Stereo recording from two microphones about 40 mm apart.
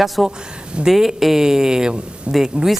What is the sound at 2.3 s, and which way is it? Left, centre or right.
Speech, right.